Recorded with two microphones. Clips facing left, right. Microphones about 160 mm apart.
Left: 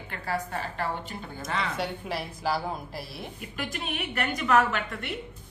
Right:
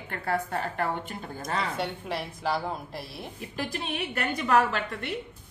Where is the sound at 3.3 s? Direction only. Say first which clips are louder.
Right 3 dB; 35° right (ahead or behind).